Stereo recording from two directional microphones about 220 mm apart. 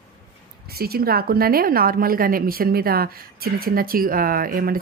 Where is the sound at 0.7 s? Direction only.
45° right (ahead or behind).